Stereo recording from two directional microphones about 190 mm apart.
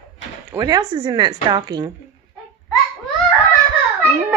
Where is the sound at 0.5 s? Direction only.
20° right (ahead or behind).